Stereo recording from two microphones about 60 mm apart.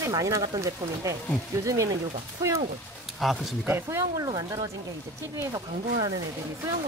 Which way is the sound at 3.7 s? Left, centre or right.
Right.